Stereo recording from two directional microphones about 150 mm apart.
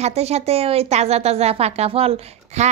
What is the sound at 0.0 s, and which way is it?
A woman's voice, 45° right (ahead or behind).